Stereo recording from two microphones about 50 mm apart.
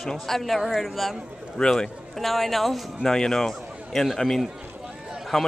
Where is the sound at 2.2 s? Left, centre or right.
Centre.